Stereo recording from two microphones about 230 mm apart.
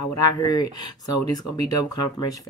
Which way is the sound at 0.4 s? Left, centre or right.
Centre.